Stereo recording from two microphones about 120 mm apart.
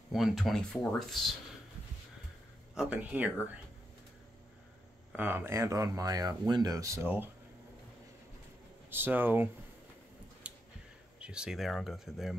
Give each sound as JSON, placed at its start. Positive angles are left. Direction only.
{"t": 0.1, "sound": "speech", "side_deg": 0}
{"t": 2.7, "sound": "speech", "side_deg": -5}
{"t": 5.1, "sound": "speech", "side_deg": -15}
{"t": 8.9, "sound": "speech", "side_deg": -15}
{"t": 10.4, "sound": "a sound", "side_deg": -10}
{"t": 11.1, "sound": "speech", "side_deg": -10}